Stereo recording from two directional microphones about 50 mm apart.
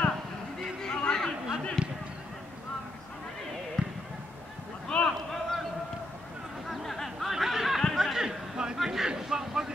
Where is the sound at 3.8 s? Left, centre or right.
Centre.